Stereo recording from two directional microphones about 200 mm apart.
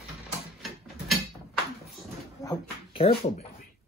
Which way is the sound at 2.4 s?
25° left (ahead or behind).